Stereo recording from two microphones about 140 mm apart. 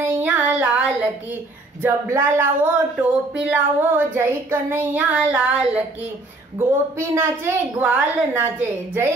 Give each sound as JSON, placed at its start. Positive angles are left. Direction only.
{"t": 0.2, "sound": "child singing", "side_deg": -10}
{"t": 1.8, "sound": "speech", "side_deg": -20}
{"t": 7.0, "sound": "speech", "side_deg": -15}